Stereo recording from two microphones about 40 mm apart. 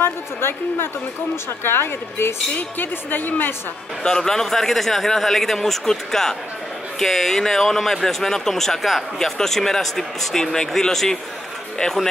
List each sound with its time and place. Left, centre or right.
0.0 s a woman's voice: left
2.5 s speech: left
4.0 s speech: centre